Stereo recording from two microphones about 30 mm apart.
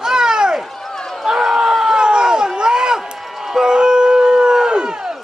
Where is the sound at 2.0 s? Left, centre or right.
Right.